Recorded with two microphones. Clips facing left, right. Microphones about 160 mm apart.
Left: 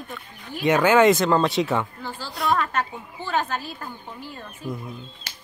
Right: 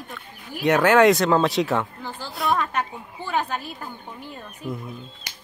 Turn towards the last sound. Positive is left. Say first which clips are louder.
# even
turn(degrees=-15)  # may be behind; listen again after turning